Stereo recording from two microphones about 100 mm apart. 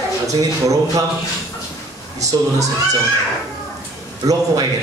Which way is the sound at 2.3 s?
45° right (ahead or behind).